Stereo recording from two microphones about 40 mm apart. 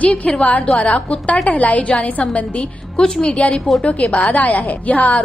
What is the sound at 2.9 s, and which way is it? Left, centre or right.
Speech, left.